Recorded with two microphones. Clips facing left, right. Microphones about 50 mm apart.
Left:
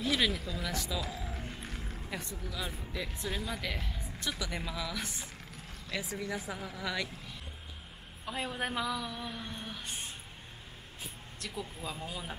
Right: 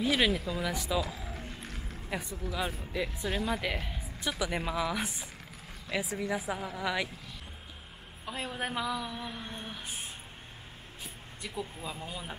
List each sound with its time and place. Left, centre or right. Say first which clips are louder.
0.0 s a woman's voice: right 3 dB; centre
1.0 s a sound: even; centre
2.0 s a woman's voice: right 6 dB; centre
8.3 s a woman's voice: even; centre
11.4 s a woman's voice: right 2 dB; centre